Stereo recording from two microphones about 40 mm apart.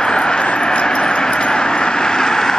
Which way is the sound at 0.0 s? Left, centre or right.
Left.